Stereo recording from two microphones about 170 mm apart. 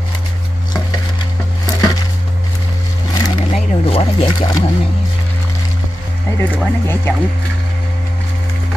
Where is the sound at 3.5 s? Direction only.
35° left (ahead or behind).